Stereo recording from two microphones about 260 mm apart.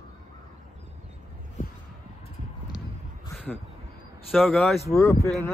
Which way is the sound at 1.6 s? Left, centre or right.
Left.